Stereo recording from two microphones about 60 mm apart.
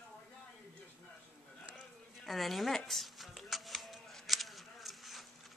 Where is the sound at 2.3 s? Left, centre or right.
Centre.